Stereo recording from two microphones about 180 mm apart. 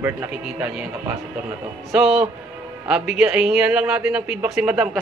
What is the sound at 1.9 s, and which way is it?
A man's voice, 5° right (ahead or behind).